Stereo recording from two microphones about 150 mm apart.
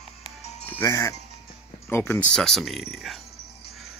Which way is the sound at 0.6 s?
15° left (ahead or behind).